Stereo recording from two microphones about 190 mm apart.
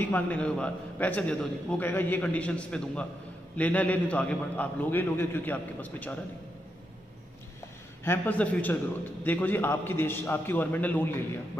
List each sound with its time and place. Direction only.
0.0 s a man's voice: 10° left (ahead or behind)
8.0 s a man's voice: 10° left (ahead or behind)